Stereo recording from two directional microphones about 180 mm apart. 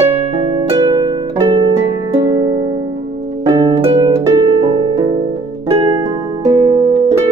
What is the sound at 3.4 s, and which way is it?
Harp, 25° right (ahead or behind).